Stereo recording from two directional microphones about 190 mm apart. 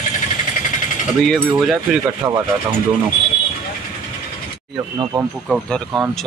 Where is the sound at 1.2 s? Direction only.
Centre (ahead or behind).